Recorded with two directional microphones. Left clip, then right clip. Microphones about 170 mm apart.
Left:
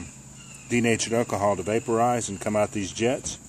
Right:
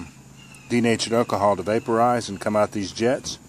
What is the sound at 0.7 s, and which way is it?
Speech, 25° right (ahead or behind).